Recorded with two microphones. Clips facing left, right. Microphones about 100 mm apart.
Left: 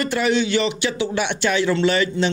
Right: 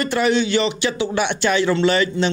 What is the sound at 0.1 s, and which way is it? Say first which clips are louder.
Speech: right 2 dB; 35° right (ahead or behind).